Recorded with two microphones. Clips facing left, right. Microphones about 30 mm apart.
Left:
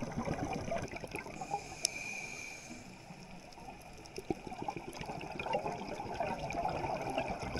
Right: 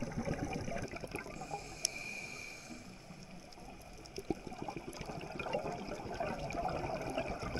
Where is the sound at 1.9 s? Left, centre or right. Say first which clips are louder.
Left 2 dB; right.